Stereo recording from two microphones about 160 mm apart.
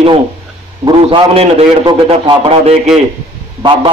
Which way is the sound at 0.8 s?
35° right (ahead or behind).